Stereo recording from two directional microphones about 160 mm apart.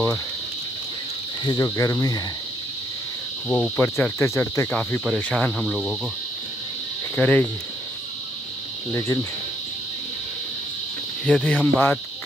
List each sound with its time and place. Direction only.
1.4 s cricket: 25° left (ahead or behind)
3.4 s cricket: centre (ahead or behind)
3.7 s cricket: 15° left (ahead or behind)
5.0 s cricket: 5° right (ahead or behind)
7.2 s cricket: 10° left (ahead or behind)
8.9 s cricket: 20° left (ahead or behind)
11.2 s cricket: 10° left (ahead or behind)